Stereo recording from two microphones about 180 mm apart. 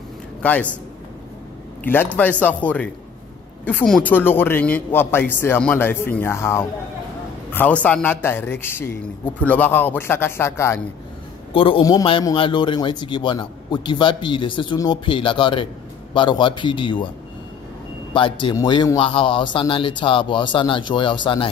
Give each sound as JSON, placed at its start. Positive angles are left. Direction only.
{"t": 0.4, "sound": "a man's voice", "side_deg": 10}
{"t": 1.9, "sound": "a man's voice", "side_deg": 10}
{"t": 11.5, "sound": "a man's voice", "side_deg": 30}
{"t": 18.1, "sound": "a man's voice", "side_deg": 25}